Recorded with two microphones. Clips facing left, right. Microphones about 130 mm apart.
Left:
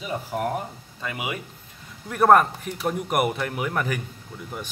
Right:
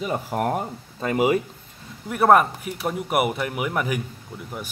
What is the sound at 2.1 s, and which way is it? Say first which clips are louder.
Speech: even; 5° right (ahead or behind).